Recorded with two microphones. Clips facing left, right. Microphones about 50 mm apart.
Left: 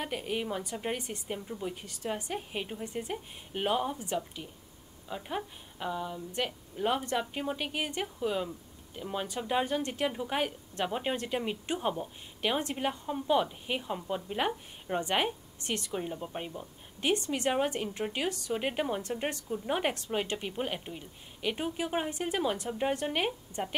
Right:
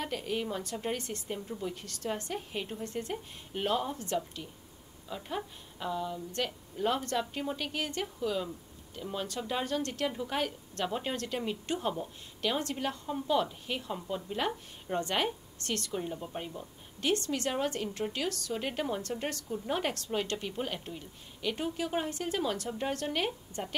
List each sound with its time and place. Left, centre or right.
0.0 s a woman's voice: centre